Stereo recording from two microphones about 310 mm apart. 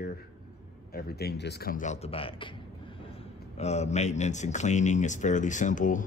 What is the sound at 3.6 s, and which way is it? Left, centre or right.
Speech, left.